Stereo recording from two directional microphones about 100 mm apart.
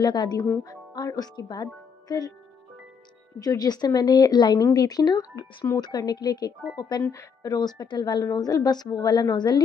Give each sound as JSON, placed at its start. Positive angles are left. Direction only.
{"t": 0.0, "sound": "a woman's voice", "side_deg": 45}
{"t": 3.3, "sound": "a woman's voice", "side_deg": 40}